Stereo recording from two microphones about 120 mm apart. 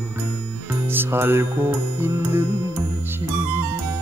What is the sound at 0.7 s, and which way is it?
Music, 20° right (ahead or behind).